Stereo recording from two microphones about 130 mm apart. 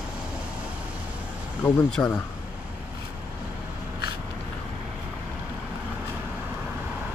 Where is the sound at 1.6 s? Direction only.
10° left (ahead or behind).